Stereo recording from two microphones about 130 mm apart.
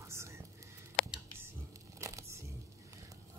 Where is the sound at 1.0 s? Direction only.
5° left (ahead or behind).